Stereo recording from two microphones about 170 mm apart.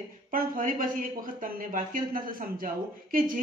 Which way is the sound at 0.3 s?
55° right (ahead or behind).